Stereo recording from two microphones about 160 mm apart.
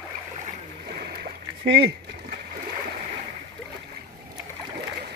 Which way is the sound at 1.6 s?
90° right.